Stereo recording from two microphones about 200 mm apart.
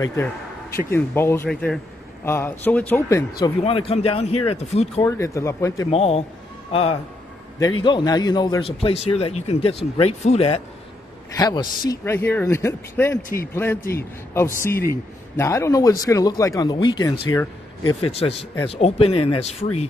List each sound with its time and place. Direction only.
0.0 s a man's voice: 15° left (ahead or behind)
3.6 s a man's voice: 30° left (ahead or behind)
5.0 s a man's voice: 15° left (ahead or behind)
5.9 s a man's voice: 30° left (ahead or behind)
11.3 s a man's voice: 20° left (ahead or behind)